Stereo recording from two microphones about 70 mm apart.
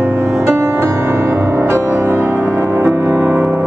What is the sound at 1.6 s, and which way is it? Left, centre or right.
Music, right.